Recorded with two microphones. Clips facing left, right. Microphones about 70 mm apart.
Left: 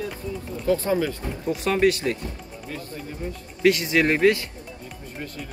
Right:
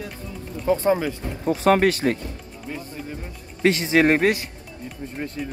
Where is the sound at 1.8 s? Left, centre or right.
Right.